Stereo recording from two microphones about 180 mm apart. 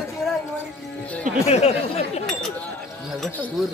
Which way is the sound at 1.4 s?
35° left (ahead or behind).